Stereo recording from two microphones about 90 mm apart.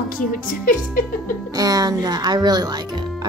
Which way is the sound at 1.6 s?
45° right (ahead or behind).